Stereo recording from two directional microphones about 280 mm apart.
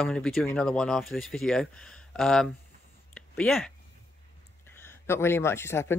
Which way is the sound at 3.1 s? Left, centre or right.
Centre.